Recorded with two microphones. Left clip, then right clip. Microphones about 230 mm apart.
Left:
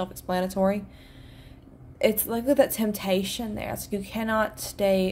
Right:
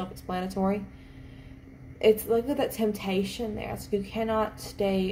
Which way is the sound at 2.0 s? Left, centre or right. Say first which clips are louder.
Right 2 dB; left.